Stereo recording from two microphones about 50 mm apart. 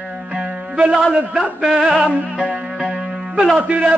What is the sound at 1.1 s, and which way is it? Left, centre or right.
Speech, right.